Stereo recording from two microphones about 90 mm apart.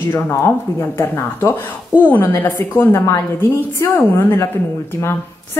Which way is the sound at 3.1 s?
35° left (ahead or behind).